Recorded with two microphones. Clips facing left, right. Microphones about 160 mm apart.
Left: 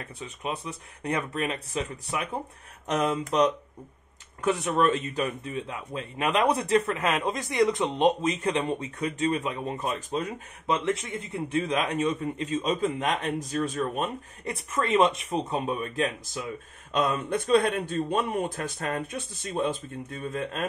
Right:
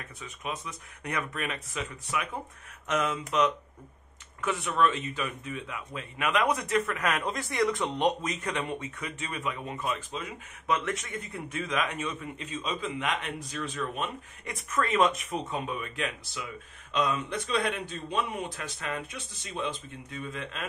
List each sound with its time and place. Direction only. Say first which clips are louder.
0.2 s speech: left 3 dB; 30° left (ahead or behind)
10.7 s a man's voice: left 3 dB; 30° left (ahead or behind); by 20.6 s 50° left (ahead or behind)